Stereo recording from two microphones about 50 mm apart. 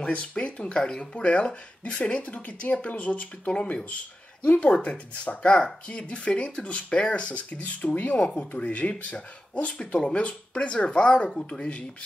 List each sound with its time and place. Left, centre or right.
0.0 s speech: left